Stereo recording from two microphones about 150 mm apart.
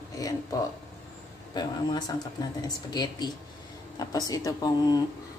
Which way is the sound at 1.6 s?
25° left (ahead or behind).